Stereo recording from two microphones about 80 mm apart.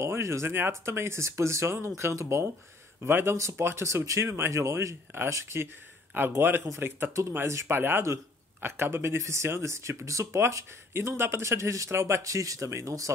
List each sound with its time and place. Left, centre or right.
0.0 s a man's voice: right